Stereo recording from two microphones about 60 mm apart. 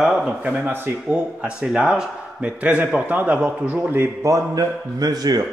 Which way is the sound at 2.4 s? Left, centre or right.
Right.